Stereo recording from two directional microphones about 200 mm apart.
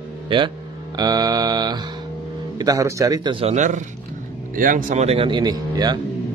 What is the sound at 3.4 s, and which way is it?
Speech, 35° right (ahead or behind).